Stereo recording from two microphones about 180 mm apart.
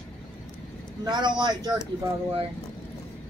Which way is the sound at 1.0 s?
25° right (ahead or behind).